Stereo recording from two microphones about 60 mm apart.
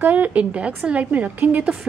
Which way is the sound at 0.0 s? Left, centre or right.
Right.